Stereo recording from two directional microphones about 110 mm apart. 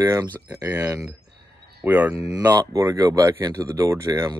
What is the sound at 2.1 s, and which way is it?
Speech, 30° right (ahead or behind).